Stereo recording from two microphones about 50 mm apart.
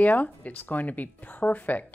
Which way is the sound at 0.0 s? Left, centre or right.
Left.